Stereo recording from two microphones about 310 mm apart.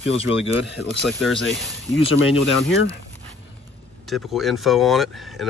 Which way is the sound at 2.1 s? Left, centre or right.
Left.